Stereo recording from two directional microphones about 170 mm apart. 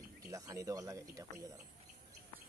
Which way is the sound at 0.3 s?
20° right (ahead or behind).